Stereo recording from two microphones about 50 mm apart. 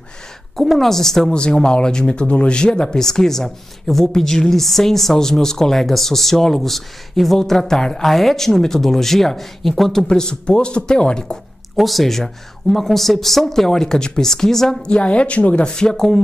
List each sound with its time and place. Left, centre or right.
0.6 s speech: centre
10.0 s speech: centre
11.7 s speech: centre
14.9 s speech: left